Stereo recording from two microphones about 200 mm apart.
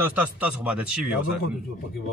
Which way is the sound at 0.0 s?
10° right (ahead or behind).